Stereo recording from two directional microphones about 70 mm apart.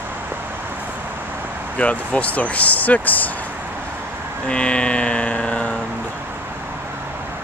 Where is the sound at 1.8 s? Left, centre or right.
Centre.